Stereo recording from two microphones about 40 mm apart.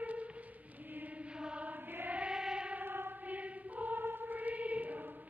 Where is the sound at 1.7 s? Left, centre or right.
Right.